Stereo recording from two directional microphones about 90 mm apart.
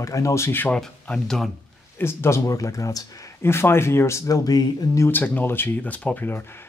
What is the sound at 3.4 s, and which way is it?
Speech, 25° left (ahead or behind).